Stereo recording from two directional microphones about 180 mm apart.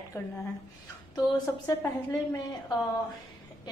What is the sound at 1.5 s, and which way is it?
Speech, 15° left (ahead or behind).